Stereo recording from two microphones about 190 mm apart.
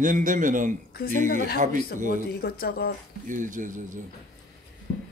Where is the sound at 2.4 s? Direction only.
50° left (ahead or behind).